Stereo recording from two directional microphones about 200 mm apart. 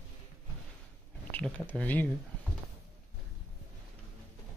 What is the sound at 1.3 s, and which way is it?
Speech, 5° left (ahead or behind).